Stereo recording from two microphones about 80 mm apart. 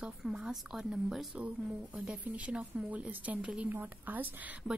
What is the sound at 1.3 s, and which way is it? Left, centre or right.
A woman's voice, centre.